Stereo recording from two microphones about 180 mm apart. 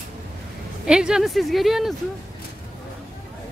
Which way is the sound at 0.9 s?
5° right (ahead or behind).